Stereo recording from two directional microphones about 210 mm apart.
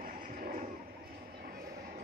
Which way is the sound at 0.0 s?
45° right (ahead or behind).